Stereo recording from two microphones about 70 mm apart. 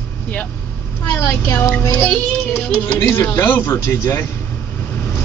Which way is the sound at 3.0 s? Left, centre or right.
Left.